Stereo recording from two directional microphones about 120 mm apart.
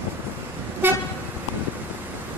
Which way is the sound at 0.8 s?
15° right (ahead or behind).